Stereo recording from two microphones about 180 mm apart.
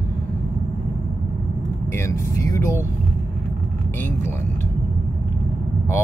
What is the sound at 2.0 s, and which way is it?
Speech, 20° left (ahead or behind).